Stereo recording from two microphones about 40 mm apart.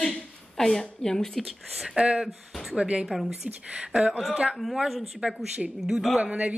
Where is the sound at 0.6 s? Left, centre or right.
Centre.